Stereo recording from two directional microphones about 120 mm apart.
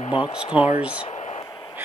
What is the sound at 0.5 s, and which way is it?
Speech, 50° left (ahead or behind).